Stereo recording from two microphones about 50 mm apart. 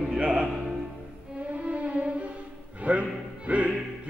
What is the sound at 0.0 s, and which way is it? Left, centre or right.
Music, centre.